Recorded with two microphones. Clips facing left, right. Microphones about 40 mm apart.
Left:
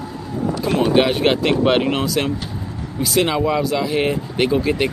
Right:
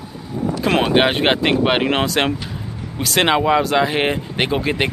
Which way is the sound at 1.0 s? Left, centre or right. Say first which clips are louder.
Even; right.